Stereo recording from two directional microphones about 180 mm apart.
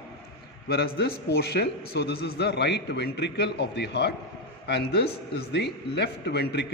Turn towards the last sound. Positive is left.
turn(degrees=70)  # may be behind; listen again after turning